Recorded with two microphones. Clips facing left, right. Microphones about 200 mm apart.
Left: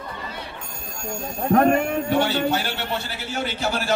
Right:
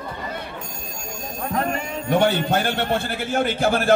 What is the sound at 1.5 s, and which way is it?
Speech, 60° left (ahead or behind).